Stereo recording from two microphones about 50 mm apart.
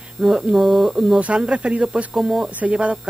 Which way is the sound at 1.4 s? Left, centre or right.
Right.